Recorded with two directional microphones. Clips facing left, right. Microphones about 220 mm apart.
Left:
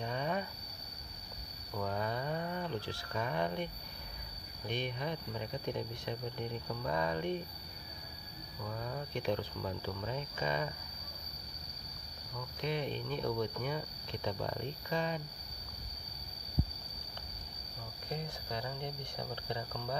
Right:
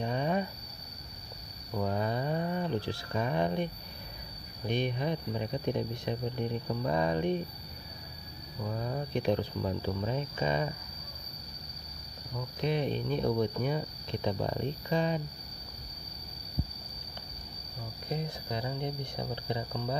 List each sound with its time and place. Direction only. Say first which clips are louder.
0.0 s cricket: right 6 dB; 25° right (ahead or behind)
1.8 s a sound: right 5 dB; 20° right (ahead or behind)
4.6 s speech: right 7 dB; 20° right (ahead or behind)
8.6 s speech: right 6 dB; 30° right (ahead or behind)
12.4 s speech: right 6 dB; 25° right (ahead or behind)
18.1 s speech: right 5 dB; 15° right (ahead or behind)